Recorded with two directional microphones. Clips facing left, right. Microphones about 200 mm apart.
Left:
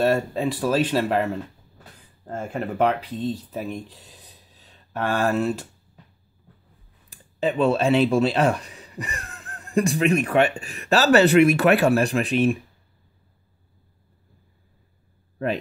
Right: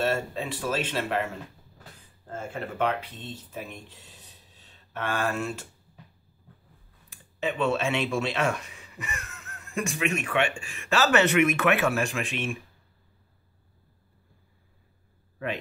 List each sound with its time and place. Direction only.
0.0 s speech: 40° left (ahead or behind)
7.4 s speech: 35° left (ahead or behind)